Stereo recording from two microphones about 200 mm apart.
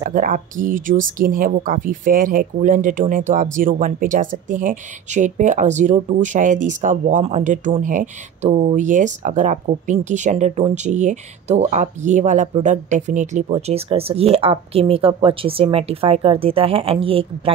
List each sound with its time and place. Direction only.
0.0 s speech: 45° right (ahead or behind)